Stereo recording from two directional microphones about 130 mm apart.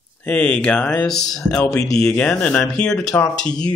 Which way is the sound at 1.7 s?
25° left (ahead or behind).